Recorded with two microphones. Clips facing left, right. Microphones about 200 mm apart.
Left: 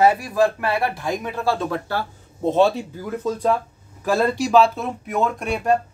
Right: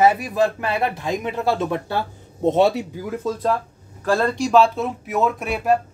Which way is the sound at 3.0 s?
5° right (ahead or behind).